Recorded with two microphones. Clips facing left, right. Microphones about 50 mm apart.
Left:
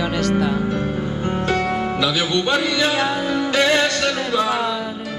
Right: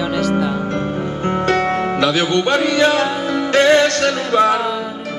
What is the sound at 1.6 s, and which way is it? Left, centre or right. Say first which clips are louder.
Music: right 4 dB; right.